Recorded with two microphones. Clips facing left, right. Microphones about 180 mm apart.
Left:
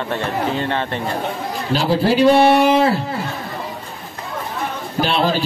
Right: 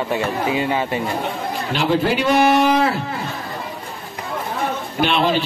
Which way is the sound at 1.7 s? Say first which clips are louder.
Left 2 dB; 35° left (ahead or behind).